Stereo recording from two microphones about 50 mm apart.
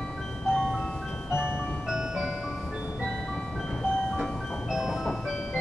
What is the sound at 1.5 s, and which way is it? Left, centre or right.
Glockenspiel, left.